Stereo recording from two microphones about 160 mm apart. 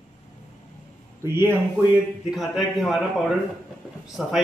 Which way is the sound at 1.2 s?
15° right (ahead or behind).